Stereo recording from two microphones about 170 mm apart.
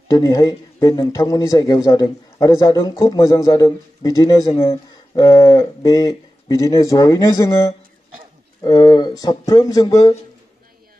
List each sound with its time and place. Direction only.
0.1 s speech: 20° left (ahead or behind)
4.5 s speech: 35° left (ahead or behind)
5.2 s speech: 20° left (ahead or behind)